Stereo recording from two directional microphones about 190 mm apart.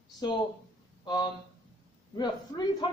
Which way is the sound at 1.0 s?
20° left (ahead or behind).